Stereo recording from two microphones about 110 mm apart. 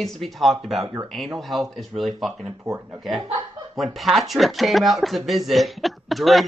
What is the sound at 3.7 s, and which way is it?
Speech, centre (ahead or behind).